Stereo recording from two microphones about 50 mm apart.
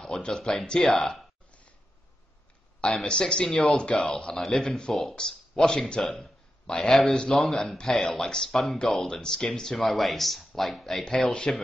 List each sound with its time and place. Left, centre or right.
0.0 s speech: centre
2.8 s speech: centre
7.2 s speech: centre
8.0 s speech: centre